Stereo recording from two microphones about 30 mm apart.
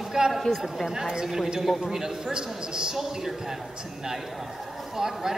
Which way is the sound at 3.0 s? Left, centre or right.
Centre.